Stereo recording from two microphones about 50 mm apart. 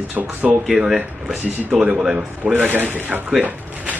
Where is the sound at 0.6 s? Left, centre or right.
Centre.